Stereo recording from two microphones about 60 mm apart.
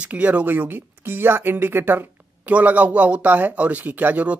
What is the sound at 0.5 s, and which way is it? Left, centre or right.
Speech, right.